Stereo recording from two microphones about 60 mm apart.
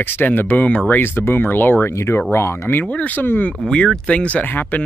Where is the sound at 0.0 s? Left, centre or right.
Left.